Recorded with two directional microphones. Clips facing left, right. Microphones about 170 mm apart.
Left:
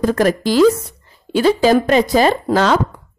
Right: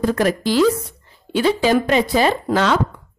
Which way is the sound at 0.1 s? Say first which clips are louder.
Left 3 dB; 45° left (ahead or behind).